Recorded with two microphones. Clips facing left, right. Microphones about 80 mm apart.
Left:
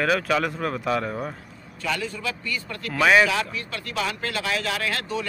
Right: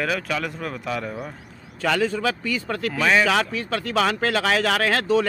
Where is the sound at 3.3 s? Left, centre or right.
Right.